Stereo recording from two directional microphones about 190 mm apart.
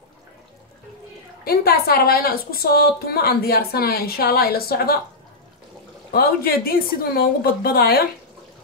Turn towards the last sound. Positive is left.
turn(degrees=55)  # may be behind; listen again after turning